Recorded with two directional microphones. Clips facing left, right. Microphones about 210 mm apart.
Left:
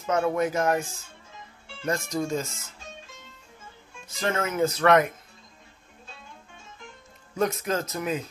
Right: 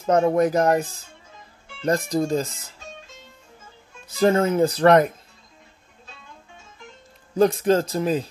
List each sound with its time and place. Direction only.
0.0 s speech: 35° right (ahead or behind)
4.1 s speech: 35° right (ahead or behind)
7.3 s speech: 30° right (ahead or behind)